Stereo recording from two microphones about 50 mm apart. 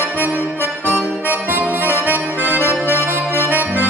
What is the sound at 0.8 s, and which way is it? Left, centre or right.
Accordion, right.